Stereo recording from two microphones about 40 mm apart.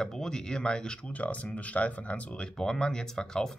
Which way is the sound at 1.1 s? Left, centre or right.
Left.